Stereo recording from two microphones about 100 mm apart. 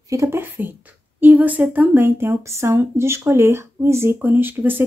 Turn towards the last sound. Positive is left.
turn(degrees=-20)  # may be behind; listen again after turning